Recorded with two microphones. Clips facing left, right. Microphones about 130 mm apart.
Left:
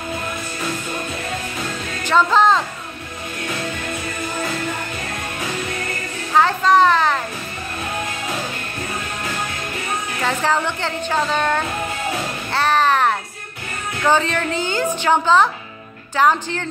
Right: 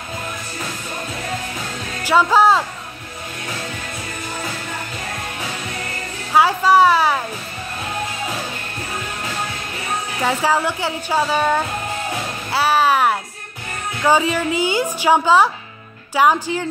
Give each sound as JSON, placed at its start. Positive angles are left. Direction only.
{"t": 2.0, "sound": "speech", "side_deg": -10}
{"t": 6.3, "sound": "a sound", "side_deg": -10}
{"t": 10.2, "sound": "a woman's voice", "side_deg": -5}
{"t": 12.5, "sound": "music", "side_deg": -5}
{"t": 14.0, "sound": "a woman's voice", "side_deg": -10}